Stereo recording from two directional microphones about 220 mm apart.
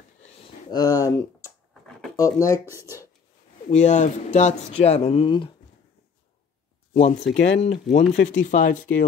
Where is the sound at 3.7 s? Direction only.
30° left (ahead or behind).